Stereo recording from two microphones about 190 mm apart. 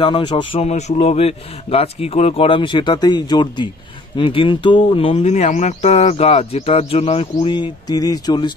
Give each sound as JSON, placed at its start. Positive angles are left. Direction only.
{"t": 0.0, "sound": "speech", "side_deg": 25}